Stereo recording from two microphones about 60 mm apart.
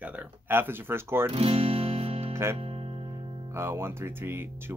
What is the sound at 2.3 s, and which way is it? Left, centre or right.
Speech, right.